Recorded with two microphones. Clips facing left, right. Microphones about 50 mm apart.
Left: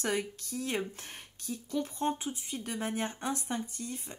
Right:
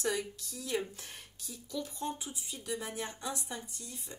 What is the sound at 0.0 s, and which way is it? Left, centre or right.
Speech, left.